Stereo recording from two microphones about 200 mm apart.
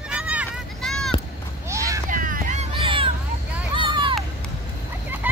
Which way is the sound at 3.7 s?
25° right (ahead or behind).